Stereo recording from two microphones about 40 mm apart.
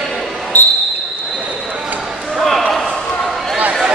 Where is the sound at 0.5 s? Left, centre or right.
Left.